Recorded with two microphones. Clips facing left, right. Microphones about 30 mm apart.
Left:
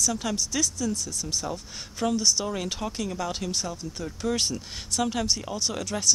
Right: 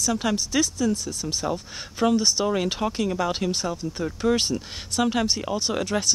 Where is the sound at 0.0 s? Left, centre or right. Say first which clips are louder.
Right 3 dB; right.